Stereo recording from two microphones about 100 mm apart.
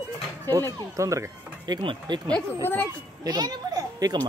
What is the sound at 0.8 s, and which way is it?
Speech, 30° right (ahead or behind).